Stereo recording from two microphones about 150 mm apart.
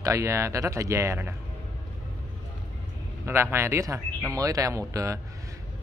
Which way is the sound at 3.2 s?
15° right (ahead or behind).